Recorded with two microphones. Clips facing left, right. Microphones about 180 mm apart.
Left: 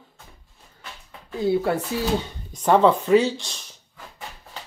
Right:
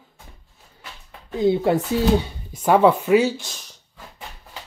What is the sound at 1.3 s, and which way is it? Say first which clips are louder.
Speech: right 3 dB; 20° right (ahead or behind).